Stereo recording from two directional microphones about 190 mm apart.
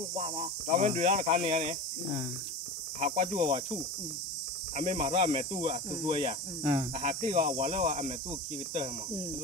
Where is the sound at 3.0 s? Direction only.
35° right (ahead or behind).